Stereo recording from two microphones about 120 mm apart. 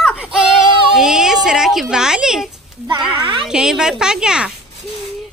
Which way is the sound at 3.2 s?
45° right (ahead or behind).